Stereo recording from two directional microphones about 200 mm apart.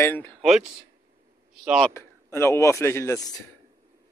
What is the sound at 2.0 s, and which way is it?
Speech, 15° left (ahead or behind).